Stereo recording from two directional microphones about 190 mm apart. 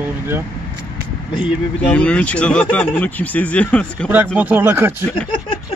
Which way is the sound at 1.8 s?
5° left (ahead or behind).